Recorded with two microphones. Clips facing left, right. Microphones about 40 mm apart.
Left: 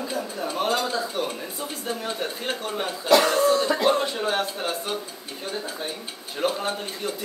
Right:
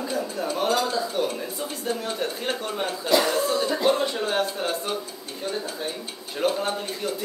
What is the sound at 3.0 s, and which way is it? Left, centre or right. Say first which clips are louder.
Speech: left 4 dB; left.